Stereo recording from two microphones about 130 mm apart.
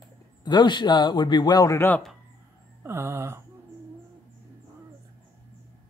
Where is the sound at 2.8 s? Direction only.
20° right (ahead or behind).